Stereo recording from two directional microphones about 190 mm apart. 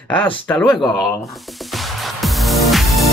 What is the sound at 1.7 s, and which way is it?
Music, centre (ahead or behind).